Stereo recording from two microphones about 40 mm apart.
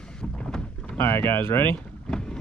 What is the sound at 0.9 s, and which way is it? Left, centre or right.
Speech, left.